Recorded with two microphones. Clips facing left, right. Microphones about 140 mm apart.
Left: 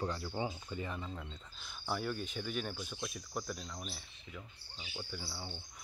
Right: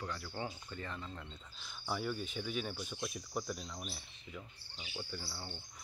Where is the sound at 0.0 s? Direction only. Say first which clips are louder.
Left 5 dB; 30° left (ahead or behind).